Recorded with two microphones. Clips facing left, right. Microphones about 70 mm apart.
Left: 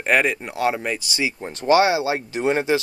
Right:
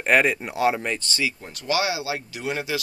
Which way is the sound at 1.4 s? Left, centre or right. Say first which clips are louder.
Left 11 dB; left.